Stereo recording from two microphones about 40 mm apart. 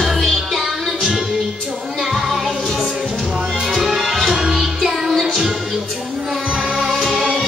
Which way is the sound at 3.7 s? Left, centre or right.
Centre.